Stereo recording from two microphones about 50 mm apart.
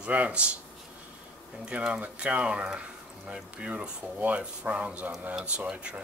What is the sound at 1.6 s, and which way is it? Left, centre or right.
Speech, right.